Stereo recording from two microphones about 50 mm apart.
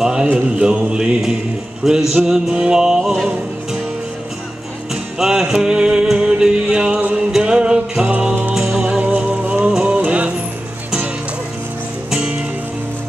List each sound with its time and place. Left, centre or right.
0.0 s mantra: centre
0.3 s music: centre
5.2 s music: centre
9.0 s music: right
12.1 s music: centre